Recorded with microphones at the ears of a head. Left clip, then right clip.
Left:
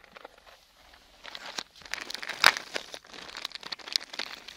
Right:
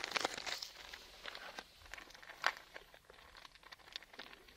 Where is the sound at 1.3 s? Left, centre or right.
Left.